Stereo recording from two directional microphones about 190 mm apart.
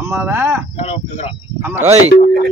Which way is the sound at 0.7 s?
30° left (ahead or behind).